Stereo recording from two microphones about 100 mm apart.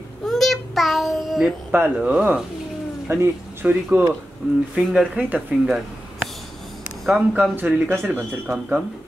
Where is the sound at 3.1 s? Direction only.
25° right (ahead or behind).